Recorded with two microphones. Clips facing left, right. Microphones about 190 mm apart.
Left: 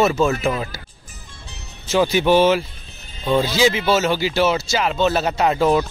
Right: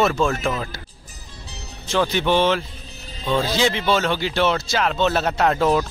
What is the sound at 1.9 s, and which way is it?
A man's voice, 10° left (ahead or behind).